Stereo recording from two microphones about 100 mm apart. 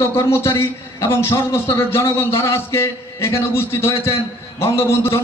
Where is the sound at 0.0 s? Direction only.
30° left (ahead or behind).